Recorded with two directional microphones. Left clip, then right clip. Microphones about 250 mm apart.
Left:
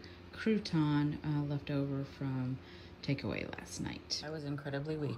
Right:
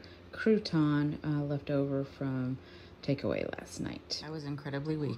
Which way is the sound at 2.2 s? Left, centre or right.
Right.